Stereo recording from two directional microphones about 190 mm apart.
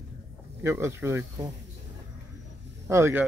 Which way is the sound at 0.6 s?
15° right (ahead or behind).